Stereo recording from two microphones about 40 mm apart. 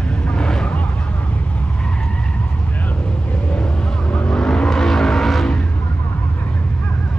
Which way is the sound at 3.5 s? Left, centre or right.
Left.